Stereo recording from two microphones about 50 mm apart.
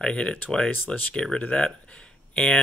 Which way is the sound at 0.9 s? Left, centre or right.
Left.